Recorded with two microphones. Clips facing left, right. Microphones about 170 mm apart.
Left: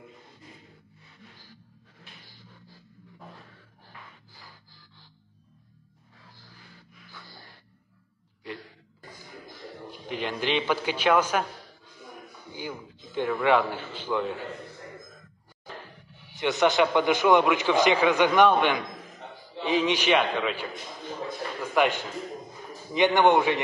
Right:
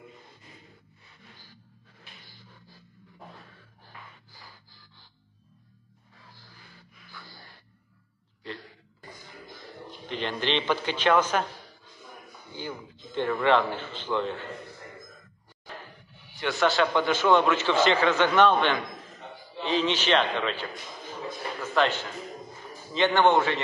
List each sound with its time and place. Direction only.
9.8 s a man's voice: 10° left (ahead or behind)
12.5 s a sound: 10° left (ahead or behind)
16.3 s a man's voice: 20° left (ahead or behind)
21.7 s a man's voice: 15° left (ahead or behind)